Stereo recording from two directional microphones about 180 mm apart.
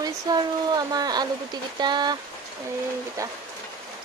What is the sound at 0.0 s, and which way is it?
Speech, 20° right (ahead or behind).